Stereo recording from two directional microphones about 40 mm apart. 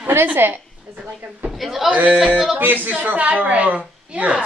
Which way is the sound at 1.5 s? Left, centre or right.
Centre.